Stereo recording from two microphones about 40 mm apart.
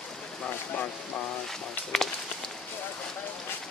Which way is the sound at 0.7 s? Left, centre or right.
Left.